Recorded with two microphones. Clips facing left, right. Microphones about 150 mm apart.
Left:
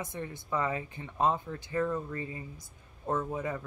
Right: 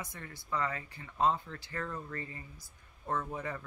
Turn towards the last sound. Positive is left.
turn(degrees=20)  # may be behind; listen again after turning